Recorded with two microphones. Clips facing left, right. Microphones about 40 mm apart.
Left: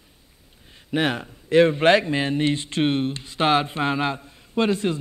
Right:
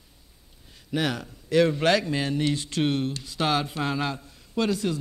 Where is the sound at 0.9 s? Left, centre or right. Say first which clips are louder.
Left 4 dB; left.